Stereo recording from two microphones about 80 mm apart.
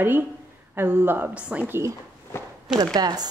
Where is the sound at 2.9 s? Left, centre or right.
Right.